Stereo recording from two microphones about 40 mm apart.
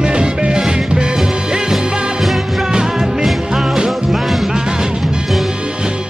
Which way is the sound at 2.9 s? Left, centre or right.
Centre.